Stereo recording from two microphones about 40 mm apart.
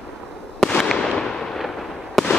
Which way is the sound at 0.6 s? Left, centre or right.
Left.